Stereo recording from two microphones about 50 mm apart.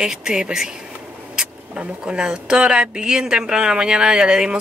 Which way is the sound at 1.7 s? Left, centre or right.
Right.